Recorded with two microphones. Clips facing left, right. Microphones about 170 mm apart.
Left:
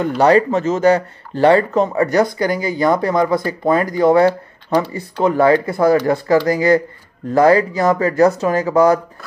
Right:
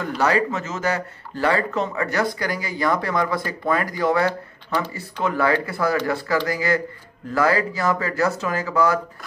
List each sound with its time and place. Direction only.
0.2 s speech: 30° left (ahead or behind)
1.8 s speech: 40° left (ahead or behind)
2.3 s speech: 25° left (ahead or behind)
4.8 s speech: 10° left (ahead or behind)
5.2 s speech: 35° left (ahead or behind)